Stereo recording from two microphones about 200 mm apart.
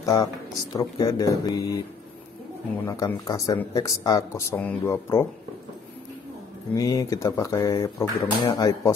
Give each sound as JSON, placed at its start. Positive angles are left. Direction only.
{"t": 0.0, "sound": "speech", "side_deg": 20}
{"t": 2.8, "sound": "speech", "side_deg": 15}
{"t": 6.8, "sound": "speech", "side_deg": 15}